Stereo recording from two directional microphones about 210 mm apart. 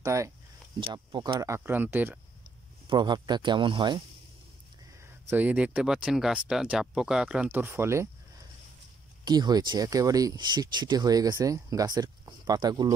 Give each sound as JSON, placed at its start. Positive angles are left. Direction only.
{"t": 0.0, "sound": "speech", "side_deg": -15}
{"t": 2.9, "sound": "speech", "side_deg": -20}
{"t": 5.3, "sound": "speech", "side_deg": -10}
{"t": 9.2, "sound": "speech", "side_deg": -20}